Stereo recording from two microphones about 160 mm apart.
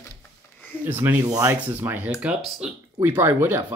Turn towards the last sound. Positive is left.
turn(degrees=-15)  # may be behind; listen again after turning